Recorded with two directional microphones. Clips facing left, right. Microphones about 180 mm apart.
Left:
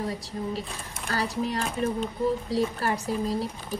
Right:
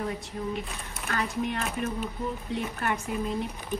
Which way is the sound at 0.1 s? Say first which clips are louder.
Left 1 dB; 35° left (ahead or behind).